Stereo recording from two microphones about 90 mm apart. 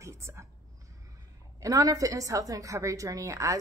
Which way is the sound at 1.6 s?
40° right (ahead or behind).